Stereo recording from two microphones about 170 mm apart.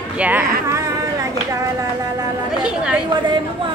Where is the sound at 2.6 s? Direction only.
5° right (ahead or behind).